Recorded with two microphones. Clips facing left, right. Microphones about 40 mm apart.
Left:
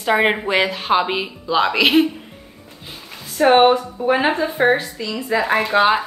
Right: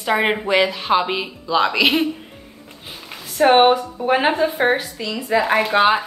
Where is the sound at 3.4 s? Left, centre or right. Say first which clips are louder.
Even; centre.